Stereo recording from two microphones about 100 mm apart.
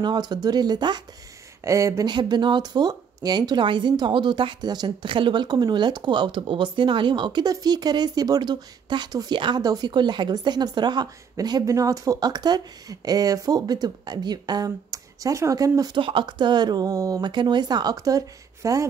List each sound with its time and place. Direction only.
0.0 s speech: 45° right (ahead or behind)
1.6 s speech: 30° right (ahead or behind)
2.0 s speech: 50° right (ahead or behind)
16.0 s speech: 60° right (ahead or behind); by 17.2 s 35° right (ahead or behind)
17.2 s speech: 50° right (ahead or behind); by 18.9 s 35° right (ahead or behind)